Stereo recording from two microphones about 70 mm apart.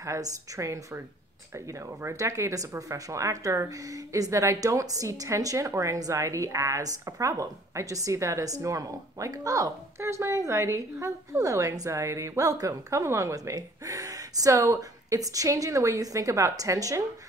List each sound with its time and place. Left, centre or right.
0.0 s speech: right
13.6 s speech: right